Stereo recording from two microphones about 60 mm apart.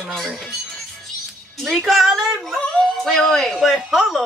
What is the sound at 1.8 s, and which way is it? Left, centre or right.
Speech, centre.